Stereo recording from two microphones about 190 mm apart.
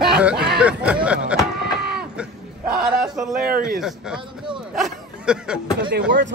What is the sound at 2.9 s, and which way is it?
Speech, 5° right (ahead or behind).